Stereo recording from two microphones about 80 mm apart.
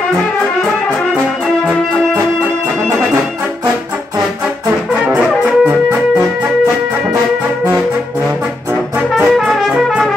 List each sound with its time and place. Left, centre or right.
5.0 s brass instrument: centre
9.1 s music: centre